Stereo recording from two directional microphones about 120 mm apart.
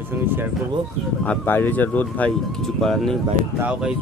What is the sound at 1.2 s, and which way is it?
Speech, 15° left (ahead or behind).